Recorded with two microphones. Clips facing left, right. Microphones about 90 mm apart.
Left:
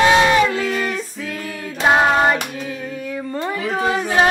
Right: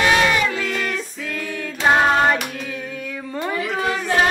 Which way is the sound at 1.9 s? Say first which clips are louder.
Left 1 dB; 5° left (ahead or behind).